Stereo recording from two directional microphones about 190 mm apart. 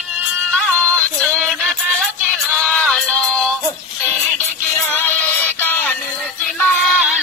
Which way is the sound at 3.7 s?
10° left (ahead or behind).